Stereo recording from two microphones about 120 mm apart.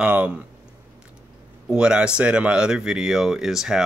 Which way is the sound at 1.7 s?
10° right (ahead or behind).